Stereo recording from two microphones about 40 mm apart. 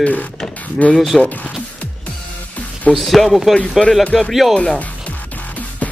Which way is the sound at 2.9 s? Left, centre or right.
Centre.